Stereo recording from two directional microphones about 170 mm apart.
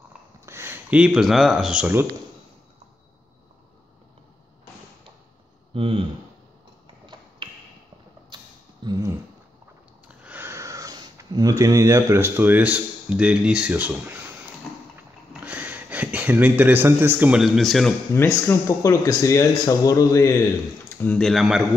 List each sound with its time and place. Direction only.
0.5 s speech: 15° right (ahead or behind)
5.7 s speech: 30° right (ahead or behind)
7.4 s a sound: 30° right (ahead or behind)
8.8 s dog: 20° right (ahead or behind)
10.0 s speech: 10° right (ahead or behind)
15.4 s speech: 10° right (ahead or behind)
18.1 s speech: 15° left (ahead or behind)
21.0 s speech: 5° left (ahead or behind)